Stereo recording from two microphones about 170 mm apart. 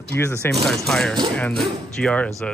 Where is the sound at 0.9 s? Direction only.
5° left (ahead or behind).